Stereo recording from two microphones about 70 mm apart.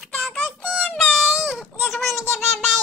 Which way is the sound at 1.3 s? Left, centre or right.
Centre.